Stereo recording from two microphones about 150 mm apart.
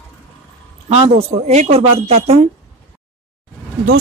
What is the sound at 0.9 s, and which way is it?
A woman's voice, 45° right (ahead or behind).